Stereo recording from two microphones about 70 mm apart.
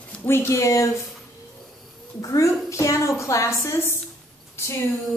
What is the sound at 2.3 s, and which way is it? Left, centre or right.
A woman's voice, left.